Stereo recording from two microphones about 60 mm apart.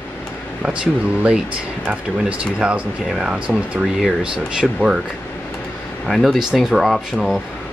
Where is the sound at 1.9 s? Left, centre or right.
Right.